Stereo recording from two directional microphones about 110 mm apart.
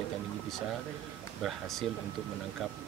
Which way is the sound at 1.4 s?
Centre (ahead or behind).